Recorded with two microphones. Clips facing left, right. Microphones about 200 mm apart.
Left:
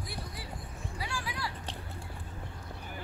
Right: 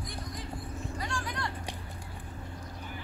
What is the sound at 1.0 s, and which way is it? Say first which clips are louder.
Vehicle: even; 5° left (ahead or behind).